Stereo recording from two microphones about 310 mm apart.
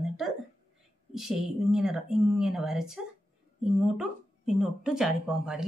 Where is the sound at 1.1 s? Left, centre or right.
Centre.